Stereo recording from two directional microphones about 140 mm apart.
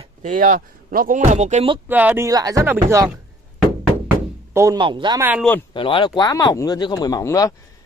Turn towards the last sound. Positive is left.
turn(degrees=25)  # may be behind; listen again after turning